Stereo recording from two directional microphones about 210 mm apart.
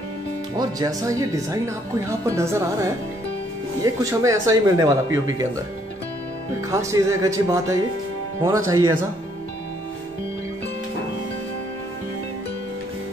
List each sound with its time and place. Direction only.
0.6 s speech: 15° right (ahead or behind)
6.7 s speech: 15° right (ahead or behind)